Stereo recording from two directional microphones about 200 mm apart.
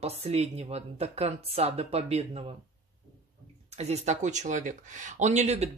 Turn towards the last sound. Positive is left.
turn(degrees=-35)  # may be behind; listen again after turning